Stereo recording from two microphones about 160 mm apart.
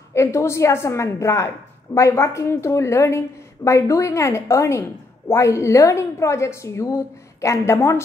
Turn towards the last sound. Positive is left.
turn(degrees=15)  # may be behind; listen again after turning